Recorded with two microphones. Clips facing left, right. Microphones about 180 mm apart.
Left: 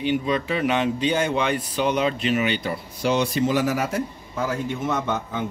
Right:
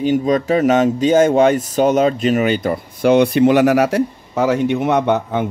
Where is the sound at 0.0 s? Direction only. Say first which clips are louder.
Right 7 dB; 45° right (ahead or behind).